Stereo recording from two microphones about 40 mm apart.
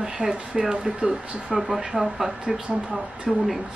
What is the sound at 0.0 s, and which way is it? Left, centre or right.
Speech, centre.